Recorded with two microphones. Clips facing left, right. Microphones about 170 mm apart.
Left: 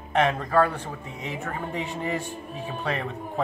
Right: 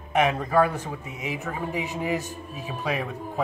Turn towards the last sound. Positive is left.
turn(degrees=-10)  # may be behind; listen again after turning